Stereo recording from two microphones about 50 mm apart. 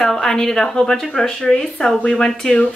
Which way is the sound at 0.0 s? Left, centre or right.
Centre.